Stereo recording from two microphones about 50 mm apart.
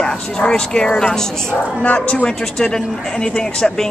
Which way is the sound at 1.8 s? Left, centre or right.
Left.